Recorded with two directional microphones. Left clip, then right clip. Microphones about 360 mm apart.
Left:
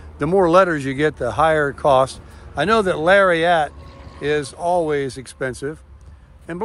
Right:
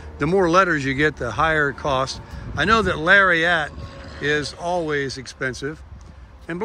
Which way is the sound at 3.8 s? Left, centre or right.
Right.